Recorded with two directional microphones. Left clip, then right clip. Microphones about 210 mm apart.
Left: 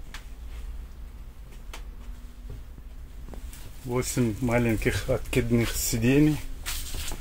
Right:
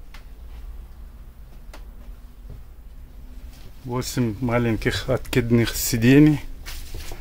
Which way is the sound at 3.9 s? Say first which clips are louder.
Right 1 dB; 10° right (ahead or behind).